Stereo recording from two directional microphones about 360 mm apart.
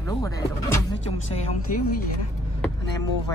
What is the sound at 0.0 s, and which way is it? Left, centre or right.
Speech, centre.